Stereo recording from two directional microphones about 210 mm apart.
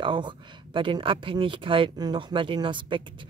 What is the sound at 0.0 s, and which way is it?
Speech, 20° right (ahead or behind).